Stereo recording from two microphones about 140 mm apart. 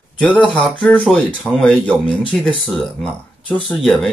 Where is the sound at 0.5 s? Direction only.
5° left (ahead or behind).